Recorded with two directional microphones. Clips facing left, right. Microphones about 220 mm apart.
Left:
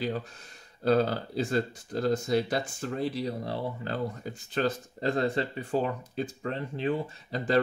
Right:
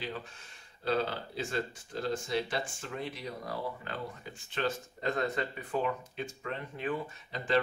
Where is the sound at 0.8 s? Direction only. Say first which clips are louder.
Left 7 dB; 40° left (ahead or behind).